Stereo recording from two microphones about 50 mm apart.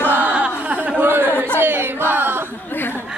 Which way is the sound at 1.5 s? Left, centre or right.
Right.